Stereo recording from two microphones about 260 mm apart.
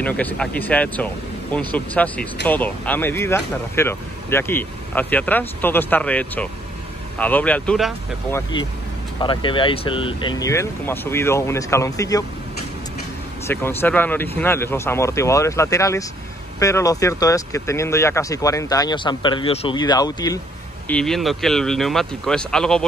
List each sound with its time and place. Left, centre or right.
0.0 s speech: centre
8.4 s speech: centre
13.5 s speech: centre
20.9 s speech: centre